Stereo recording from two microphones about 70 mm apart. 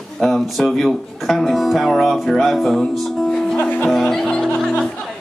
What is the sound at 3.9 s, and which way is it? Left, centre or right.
Music, centre.